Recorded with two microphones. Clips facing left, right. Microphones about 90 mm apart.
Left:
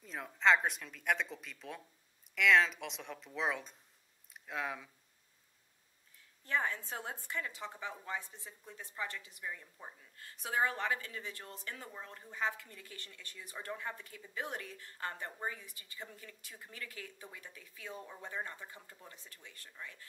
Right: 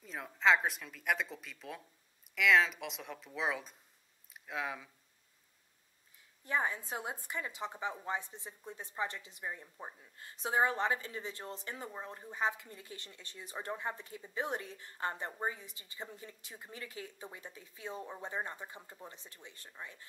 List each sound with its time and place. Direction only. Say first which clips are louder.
0.0 s speech: even; centre (ahead or behind)
6.4 s a woman's voice: right 1 dB; 15° right (ahead or behind)